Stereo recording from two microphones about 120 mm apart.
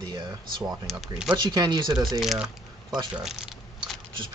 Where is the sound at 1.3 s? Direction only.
35° right (ahead or behind).